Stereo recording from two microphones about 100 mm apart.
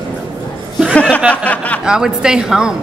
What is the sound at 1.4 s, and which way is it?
Snicker, 15° left (ahead or behind).